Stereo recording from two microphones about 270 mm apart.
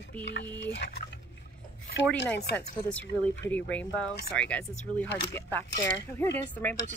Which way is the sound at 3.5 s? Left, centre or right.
Centre.